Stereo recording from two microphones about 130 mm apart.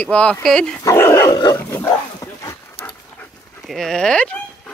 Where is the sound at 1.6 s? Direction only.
20° left (ahead or behind).